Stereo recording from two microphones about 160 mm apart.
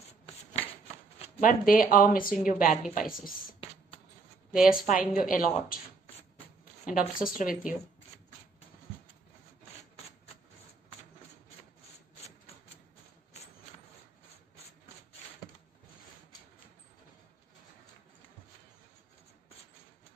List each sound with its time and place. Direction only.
1.4 s a woman's voice: 60° left (ahead or behind)
4.6 s a woman's voice: 60° left (ahead or behind)
6.9 s a woman's voice: 60° left (ahead or behind)